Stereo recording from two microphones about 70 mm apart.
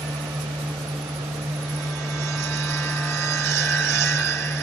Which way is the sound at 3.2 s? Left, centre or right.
Left.